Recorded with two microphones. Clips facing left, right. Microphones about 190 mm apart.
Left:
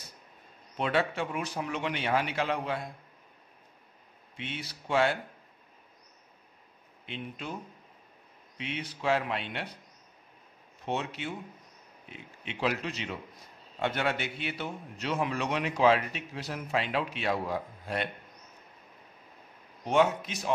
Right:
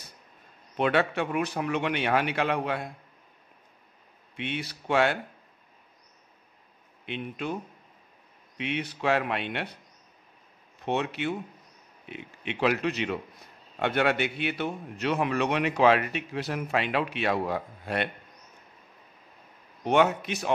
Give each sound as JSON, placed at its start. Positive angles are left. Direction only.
{"t": 0.7, "sound": "a man's voice", "side_deg": -65}
{"t": 4.4, "sound": "a man's voice", "side_deg": -65}
{"t": 7.1, "sound": "a man's voice", "side_deg": -60}
{"t": 8.5, "sound": "a man's voice", "side_deg": -65}
{"t": 10.9, "sound": "a man's voice", "side_deg": -65}
{"t": 19.8, "sound": "a man's voice", "side_deg": -65}